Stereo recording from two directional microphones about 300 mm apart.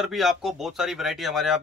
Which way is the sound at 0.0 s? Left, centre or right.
Centre.